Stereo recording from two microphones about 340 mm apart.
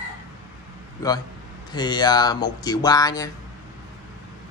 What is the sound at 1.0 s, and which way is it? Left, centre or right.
Speech, centre.